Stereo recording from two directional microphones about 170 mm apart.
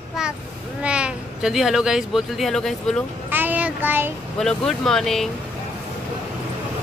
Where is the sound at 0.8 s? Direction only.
5° right (ahead or behind).